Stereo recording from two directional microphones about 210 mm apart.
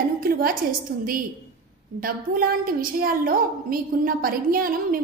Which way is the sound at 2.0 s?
45° right (ahead or behind).